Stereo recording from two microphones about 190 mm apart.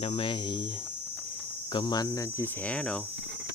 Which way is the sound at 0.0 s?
30° left (ahead or behind).